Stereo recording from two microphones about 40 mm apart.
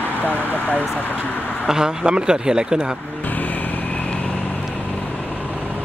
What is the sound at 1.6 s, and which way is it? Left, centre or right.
Speech, centre.